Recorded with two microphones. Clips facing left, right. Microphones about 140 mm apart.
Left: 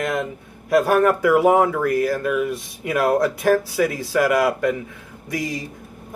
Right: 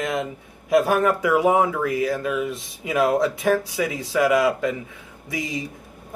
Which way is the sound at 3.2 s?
Centre (ahead or behind).